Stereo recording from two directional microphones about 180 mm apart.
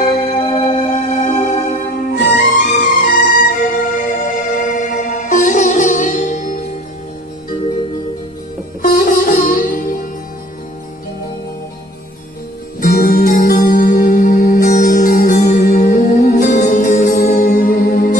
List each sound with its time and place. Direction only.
0.4 s music: 35° left (ahead or behind)
8.8 s music: 55° left (ahead or behind)
12.8 s music: 60° left (ahead or behind)